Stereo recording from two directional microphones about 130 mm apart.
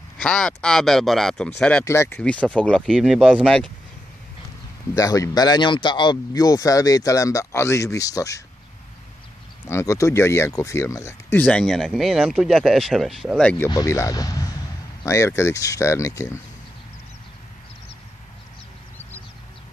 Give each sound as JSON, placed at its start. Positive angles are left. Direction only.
{"t": 0.2, "sound": "speech", "side_deg": 5}
{"t": 1.9, "sound": "speech", "side_deg": 20}
{"t": 4.9, "sound": "speech", "side_deg": 25}
{"t": 9.7, "sound": "speech", "side_deg": 20}
{"t": 13.7, "sound": "speech", "side_deg": 25}